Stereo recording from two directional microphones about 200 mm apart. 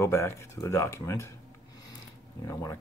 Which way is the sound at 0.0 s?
15° left (ahead or behind).